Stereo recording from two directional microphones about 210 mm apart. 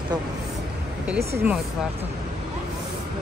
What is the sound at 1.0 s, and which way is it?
Speech, 5° right (ahead or behind).